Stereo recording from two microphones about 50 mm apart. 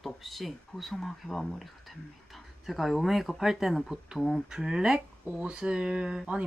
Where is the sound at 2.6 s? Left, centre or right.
Centre.